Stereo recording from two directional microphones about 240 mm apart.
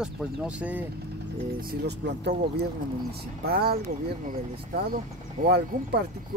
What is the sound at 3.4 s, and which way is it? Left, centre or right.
Speech, right.